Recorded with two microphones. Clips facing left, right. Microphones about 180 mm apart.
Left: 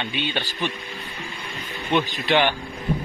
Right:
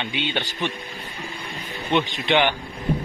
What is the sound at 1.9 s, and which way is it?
Speech, 20° right (ahead or behind).